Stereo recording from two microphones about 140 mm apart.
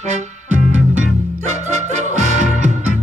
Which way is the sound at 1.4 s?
55° right (ahead or behind).